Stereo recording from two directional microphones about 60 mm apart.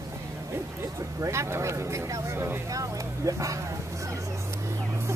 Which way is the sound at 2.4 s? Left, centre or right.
Right.